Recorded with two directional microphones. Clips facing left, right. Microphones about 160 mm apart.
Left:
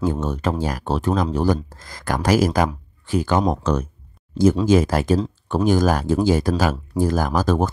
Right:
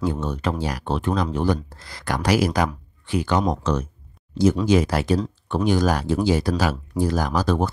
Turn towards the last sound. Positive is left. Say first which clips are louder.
# left 2 dB
turn(degrees=45)  # may be behind; listen again after turning